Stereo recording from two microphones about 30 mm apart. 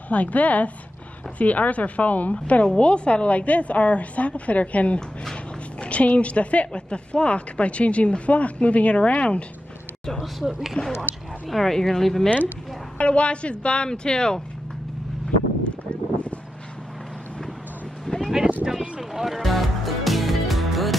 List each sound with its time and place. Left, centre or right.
0.1 s a woman's voice: left
2.4 s a woman's voice: left
6.7 s a woman's voice: left
10.8 s a woman's voice: left
11.5 s speech: centre
12.9 s speech: left
13.8 s speech: left
18.0 s vehicle: centre
18.7 s music: centre